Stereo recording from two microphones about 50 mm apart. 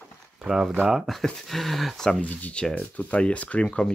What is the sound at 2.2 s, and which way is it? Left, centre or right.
Speech, left.